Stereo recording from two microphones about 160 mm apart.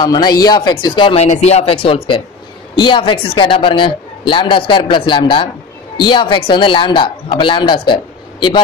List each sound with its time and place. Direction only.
0.0 s a woman's voice: 25° left (ahead or behind)